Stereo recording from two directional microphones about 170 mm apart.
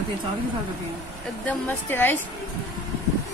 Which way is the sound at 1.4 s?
10° left (ahead or behind).